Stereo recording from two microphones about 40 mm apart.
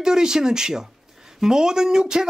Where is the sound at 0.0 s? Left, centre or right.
Centre.